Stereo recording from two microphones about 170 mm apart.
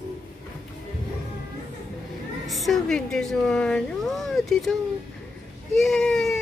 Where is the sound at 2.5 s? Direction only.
Centre (ahead or behind).